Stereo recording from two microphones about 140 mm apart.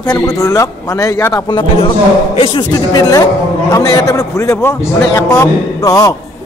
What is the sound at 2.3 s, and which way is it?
A man's voice, 35° left (ahead or behind).